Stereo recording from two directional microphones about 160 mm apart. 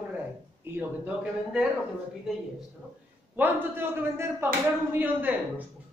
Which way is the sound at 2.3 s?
Centre (ahead or behind).